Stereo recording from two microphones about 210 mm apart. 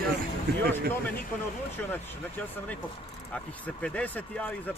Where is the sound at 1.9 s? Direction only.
5° left (ahead or behind).